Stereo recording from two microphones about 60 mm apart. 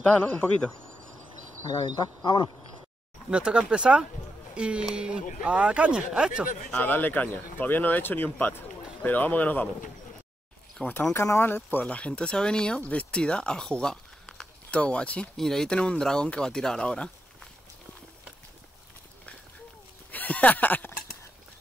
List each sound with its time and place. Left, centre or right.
0.0 s speech: left
3.3 s speech: centre
6.8 s speech: left
10.8 s speech: centre
11.1 s speech: left
11.4 s speech: left
11.8 s speech: left
15.3 s speech: centre
20.1 s speech: left